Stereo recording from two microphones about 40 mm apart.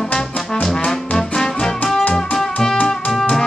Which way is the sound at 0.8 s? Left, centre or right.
Centre.